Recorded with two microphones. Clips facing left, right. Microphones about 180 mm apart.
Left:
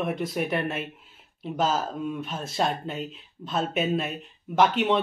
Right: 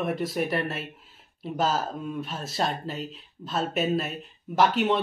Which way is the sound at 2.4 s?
Centre (ahead or behind).